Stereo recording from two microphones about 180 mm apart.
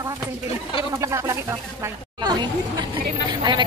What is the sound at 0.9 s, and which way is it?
A man's voice, 15° right (ahead or behind).